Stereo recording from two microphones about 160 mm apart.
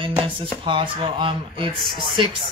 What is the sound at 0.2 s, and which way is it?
Speech, 35° right (ahead or behind).